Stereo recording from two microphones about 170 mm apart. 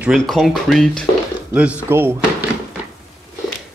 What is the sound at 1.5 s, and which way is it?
Speech, 10° right (ahead or behind).